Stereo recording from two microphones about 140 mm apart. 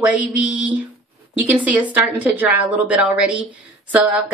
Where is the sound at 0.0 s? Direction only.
10° right (ahead or behind).